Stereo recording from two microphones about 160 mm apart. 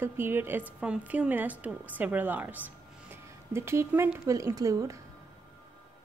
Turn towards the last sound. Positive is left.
turn(degrees=-20)  # may be behind; listen again after turning